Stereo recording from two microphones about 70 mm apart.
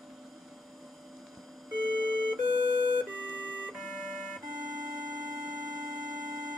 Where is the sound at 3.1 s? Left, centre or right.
Centre.